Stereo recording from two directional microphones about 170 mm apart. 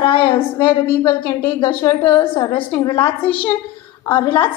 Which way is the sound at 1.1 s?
25° left (ahead or behind).